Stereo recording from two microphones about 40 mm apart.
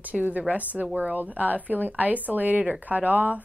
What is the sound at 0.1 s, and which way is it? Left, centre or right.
Speech, right.